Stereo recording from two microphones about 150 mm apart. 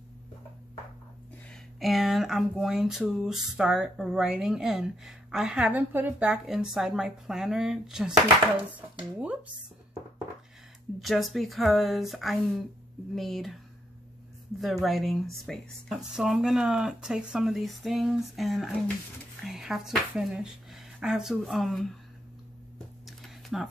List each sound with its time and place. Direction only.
1.5 s speech: centre (ahead or behind)
11.0 s speech: centre (ahead or behind)
14.6 s speech: centre (ahead or behind)
23.0 s a sound: centre (ahead or behind)